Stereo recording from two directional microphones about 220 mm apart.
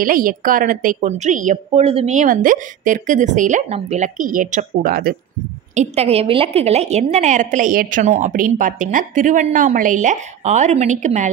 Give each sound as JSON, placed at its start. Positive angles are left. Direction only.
{"t": 0.0, "sound": "a woman's voice", "side_deg": -40}
{"t": 5.8, "sound": "a woman's voice", "side_deg": -25}